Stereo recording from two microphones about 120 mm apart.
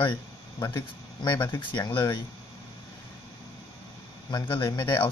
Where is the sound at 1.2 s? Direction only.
40° left (ahead or behind).